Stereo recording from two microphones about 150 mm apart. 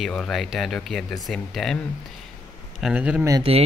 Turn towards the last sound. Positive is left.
turn(degrees=-40)  # may be behind; listen again after turning